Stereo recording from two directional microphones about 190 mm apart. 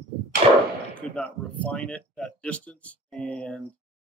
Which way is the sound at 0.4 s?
35° right (ahead or behind).